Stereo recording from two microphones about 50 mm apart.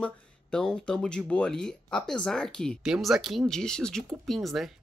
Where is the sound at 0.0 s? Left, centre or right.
Centre.